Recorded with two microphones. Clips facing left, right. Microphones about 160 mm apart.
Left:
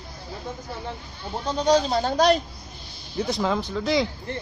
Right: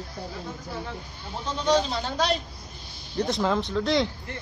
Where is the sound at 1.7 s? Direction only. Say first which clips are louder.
Left 3 dB; 40° left (ahead or behind).